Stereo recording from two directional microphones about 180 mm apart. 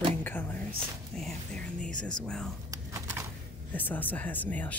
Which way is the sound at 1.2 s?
5° left (ahead or behind).